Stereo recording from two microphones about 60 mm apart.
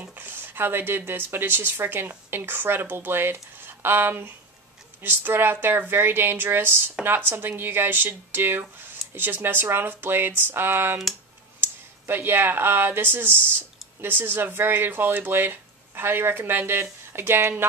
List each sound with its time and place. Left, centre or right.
0.0 s speech: right